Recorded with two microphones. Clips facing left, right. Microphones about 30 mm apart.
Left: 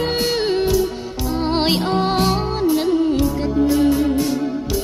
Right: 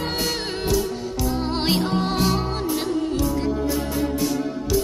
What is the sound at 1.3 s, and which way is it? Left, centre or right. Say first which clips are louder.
Music: left 6 dB; left.